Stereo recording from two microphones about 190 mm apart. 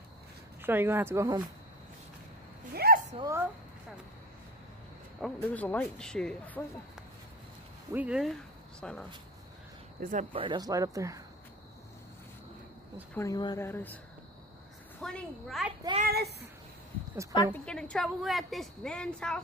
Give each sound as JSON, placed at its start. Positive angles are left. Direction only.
{"t": 0.6, "sound": "speech", "side_deg": -10}
{"t": 2.7, "sound": "a sound", "side_deg": -55}
{"t": 3.2, "sound": "speech", "side_deg": -15}
{"t": 5.2, "sound": "speech", "side_deg": 10}
{"t": 7.9, "sound": "a woman's voice", "side_deg": -5}
{"t": 9.9, "sound": "speech", "side_deg": -45}
{"t": 10.3, "sound": "speech", "side_deg": -25}
{"t": 13.1, "sound": "speech", "side_deg": 15}
{"t": 15.0, "sound": "a woman's voice", "side_deg": 5}
{"t": 16.0, "sound": "a child's voice", "side_deg": -55}
{"t": 17.5, "sound": "a woman's voice", "side_deg": 5}